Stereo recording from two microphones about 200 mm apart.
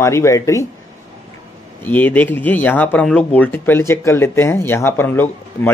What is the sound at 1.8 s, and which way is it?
Speech, 10° left (ahead or behind).